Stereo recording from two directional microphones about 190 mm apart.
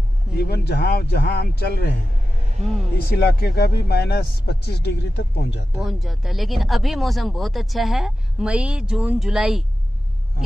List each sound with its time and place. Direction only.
0.3 s speech: 55° left (ahead or behind)
3.1 s speech: 55° left (ahead or behind)
5.8 s speech: centre (ahead or behind)